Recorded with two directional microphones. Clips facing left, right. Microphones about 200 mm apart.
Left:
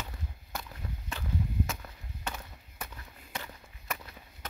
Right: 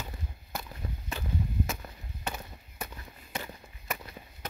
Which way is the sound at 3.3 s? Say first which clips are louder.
Right 3 dB; 15° right (ahead or behind).